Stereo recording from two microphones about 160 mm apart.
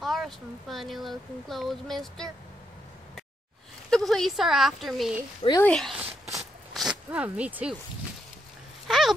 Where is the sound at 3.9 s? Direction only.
5° left (ahead or behind).